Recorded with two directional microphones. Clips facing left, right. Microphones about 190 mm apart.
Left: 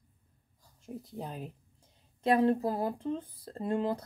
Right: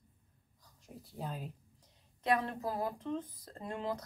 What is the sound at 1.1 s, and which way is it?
Speech, 20° left (ahead or behind).